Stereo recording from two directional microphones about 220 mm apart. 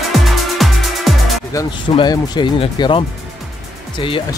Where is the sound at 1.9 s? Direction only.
20° left (ahead or behind).